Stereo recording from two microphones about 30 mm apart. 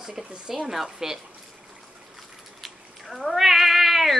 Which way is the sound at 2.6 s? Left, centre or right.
Centre.